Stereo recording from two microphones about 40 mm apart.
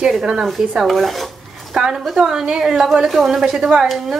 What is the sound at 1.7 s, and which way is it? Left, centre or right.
Speech, centre.